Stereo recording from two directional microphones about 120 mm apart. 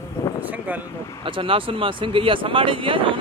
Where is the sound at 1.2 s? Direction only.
45° right (ahead or behind).